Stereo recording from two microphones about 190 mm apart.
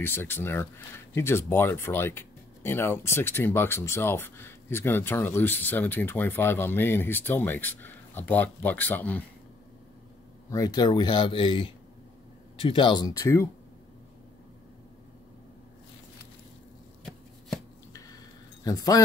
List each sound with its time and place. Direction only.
0.0 s speech: 10° left (ahead or behind)
10.5 s speech: 20° left (ahead or behind)
18.6 s speech: 20° left (ahead or behind)